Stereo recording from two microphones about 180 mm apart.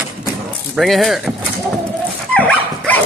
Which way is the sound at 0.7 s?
Centre (ahead or behind).